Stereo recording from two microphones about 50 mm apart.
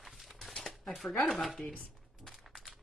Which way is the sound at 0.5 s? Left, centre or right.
Centre.